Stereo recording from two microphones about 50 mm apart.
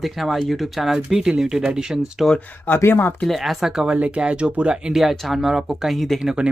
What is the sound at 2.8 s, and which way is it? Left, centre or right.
Speech, left.